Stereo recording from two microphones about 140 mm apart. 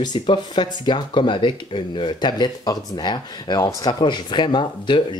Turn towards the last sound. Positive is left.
turn(degrees=35)  # may be behind; listen again after turning